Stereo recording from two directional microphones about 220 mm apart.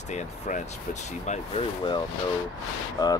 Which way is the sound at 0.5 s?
35° left (ahead or behind).